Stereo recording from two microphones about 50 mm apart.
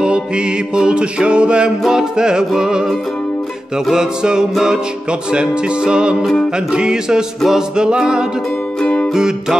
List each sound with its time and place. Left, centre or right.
0.7 s music: centre
3.9 s music: centre
8.8 s music: left
9.1 s music: centre